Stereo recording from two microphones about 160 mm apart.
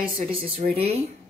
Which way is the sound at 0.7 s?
40° right (ahead or behind).